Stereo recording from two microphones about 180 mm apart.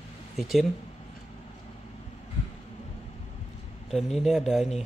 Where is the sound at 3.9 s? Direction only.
Centre (ahead or behind).